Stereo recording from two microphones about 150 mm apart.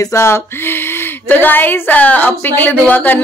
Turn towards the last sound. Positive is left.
turn(degrees=10)  # may be behind; listen again after turning